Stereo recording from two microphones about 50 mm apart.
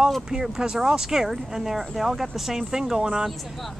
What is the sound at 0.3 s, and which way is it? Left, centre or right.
Speech, centre.